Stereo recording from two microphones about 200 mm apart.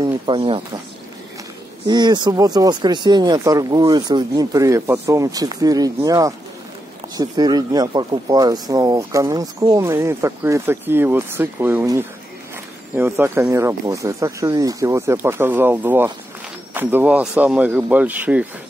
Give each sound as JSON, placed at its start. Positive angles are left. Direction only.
{"t": 0.0, "sound": "speech", "side_deg": -25}
{"t": 1.9, "sound": "speech", "side_deg": -20}